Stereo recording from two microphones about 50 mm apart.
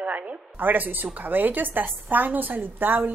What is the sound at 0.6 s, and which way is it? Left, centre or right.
A woman's voice, right.